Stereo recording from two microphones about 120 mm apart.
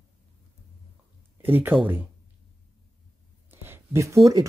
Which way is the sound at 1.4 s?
15° right (ahead or behind).